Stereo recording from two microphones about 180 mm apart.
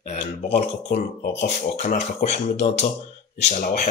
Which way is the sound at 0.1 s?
35° left (ahead or behind).